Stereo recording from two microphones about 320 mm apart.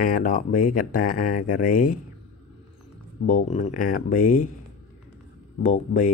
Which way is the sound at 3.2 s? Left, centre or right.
Left.